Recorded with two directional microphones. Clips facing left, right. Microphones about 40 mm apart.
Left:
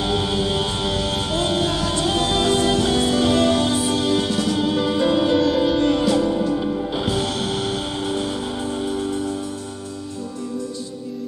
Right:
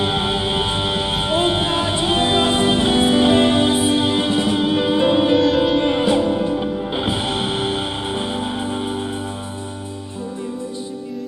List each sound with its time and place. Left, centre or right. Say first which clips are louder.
0.0 s music: right 1 dB; right